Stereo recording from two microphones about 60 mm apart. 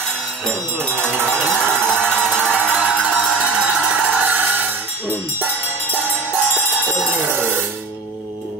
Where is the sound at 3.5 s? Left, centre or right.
Centre.